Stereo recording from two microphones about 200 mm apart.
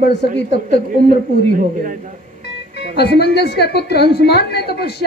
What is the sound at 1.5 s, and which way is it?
Speech, 45° right (ahead or behind).